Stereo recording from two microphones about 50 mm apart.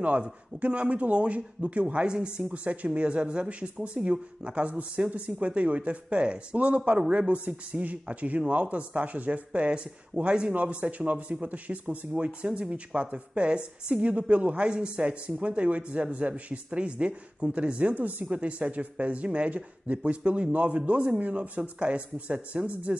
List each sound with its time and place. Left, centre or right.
0.0 s a woman's voice: right